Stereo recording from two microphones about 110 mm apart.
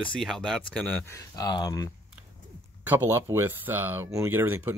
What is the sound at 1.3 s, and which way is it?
Speech, 40° left (ahead or behind).